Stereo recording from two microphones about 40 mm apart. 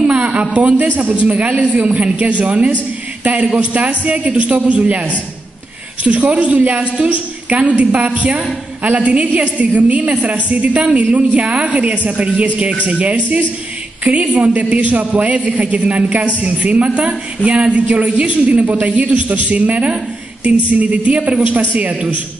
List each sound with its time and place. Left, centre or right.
0.0 s a woman's voice: right